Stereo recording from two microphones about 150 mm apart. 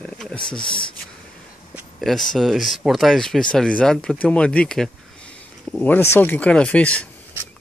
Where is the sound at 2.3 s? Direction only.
Centre (ahead or behind).